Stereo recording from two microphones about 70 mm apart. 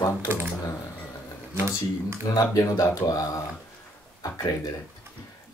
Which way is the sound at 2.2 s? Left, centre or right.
Left.